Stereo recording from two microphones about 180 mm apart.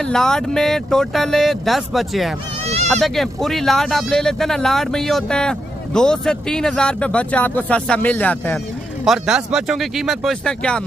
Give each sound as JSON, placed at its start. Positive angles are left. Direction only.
{"t": 0.0, "sound": "speech", "side_deg": 5}
{"t": 2.6, "sound": "bleat", "side_deg": -35}
{"t": 2.9, "sound": "speech", "side_deg": 0}
{"t": 9.0, "sound": "speech", "side_deg": 0}